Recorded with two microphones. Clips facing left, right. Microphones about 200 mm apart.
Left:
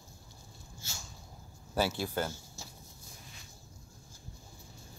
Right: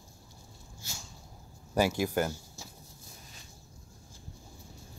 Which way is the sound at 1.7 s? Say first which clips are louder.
Right 4 dB; 10° right (ahead or behind).